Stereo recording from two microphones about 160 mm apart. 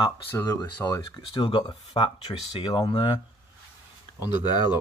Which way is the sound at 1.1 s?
30° left (ahead or behind).